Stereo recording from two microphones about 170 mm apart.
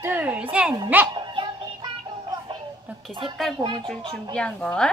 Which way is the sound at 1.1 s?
25° right (ahead or behind).